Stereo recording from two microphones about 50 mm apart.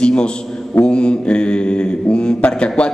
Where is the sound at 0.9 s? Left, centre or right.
Centre.